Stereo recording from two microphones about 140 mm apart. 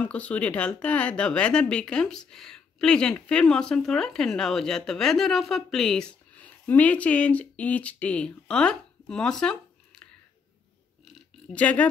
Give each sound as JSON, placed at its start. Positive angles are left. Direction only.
{"t": 0.0, "sound": "speech", "side_deg": 10}
{"t": 11.1, "sound": "oink", "side_deg": 10}